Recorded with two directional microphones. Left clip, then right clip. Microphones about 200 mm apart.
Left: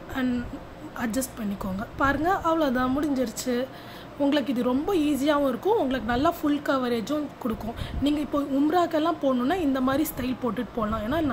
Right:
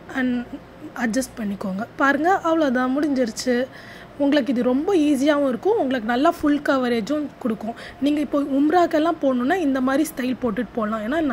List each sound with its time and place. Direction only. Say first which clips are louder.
0.1 s a woman's voice: right 4 dB; 20° right (ahead or behind)